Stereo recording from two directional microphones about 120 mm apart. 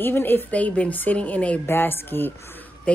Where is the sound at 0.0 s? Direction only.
15° left (ahead or behind).